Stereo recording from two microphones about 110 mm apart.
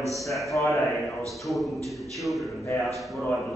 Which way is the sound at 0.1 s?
Centre (ahead or behind).